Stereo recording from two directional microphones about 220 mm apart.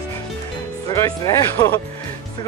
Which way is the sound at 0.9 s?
15° left (ahead or behind).